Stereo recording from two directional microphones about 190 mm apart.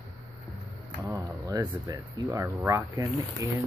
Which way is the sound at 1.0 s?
20° right (ahead or behind).